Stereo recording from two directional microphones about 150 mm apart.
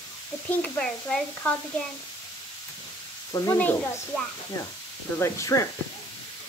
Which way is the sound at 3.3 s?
15° left (ahead or behind).